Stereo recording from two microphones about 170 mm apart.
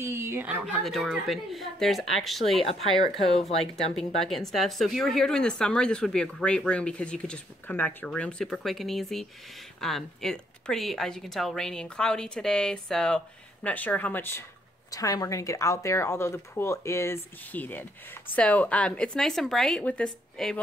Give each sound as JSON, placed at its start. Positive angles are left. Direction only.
{"t": 0.0, "sound": "speech", "side_deg": -15}
{"t": 3.0, "sound": "speech", "side_deg": 35}
{"t": 3.7, "sound": "speech", "side_deg": 0}